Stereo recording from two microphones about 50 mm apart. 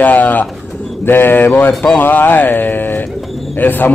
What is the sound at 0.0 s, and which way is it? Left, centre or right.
Speech, left.